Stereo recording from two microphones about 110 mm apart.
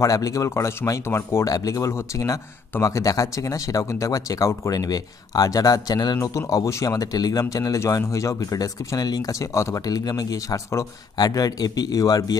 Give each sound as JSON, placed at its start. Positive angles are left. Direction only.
{"t": 0.0, "sound": "speech", "side_deg": 30}